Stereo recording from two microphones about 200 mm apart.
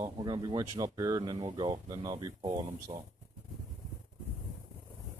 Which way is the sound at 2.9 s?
30° right (ahead or behind).